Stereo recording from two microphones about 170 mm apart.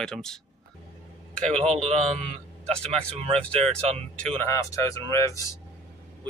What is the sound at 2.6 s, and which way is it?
Speech, 35° right (ahead or behind).